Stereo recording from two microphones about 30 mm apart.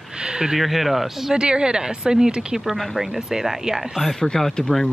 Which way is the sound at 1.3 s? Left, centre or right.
Right.